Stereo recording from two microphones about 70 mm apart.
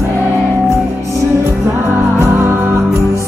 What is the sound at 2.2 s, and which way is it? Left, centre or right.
Music, right.